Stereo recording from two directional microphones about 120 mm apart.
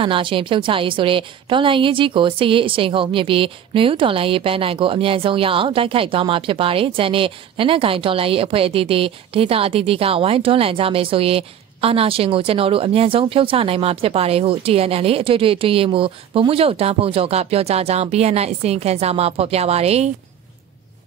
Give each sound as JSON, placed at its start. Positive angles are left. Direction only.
{"t": 0.0, "sound": "a woman's voice", "side_deg": -45}